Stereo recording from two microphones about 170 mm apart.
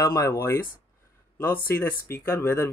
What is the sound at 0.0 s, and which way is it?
Speech, 20° left (ahead or behind).